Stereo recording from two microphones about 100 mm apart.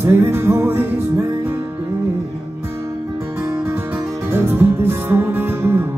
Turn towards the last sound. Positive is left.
turn(degrees=-25)  # may be behind; listen again after turning